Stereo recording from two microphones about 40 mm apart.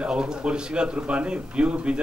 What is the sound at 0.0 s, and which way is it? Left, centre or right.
A man's voice, right.